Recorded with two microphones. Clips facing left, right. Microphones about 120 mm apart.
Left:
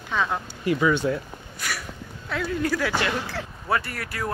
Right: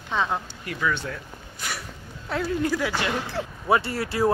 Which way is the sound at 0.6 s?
20° left (ahead or behind).